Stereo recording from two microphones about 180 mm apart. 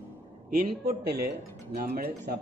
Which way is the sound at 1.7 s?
55° right (ahead or behind).